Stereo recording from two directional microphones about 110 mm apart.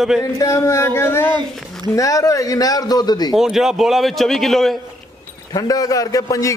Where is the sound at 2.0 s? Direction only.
30° left (ahead or behind).